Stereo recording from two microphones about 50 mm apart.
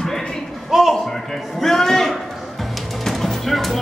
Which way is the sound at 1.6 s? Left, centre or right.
Centre.